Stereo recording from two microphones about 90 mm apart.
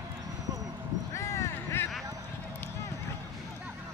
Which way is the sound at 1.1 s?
30° left (ahead or behind).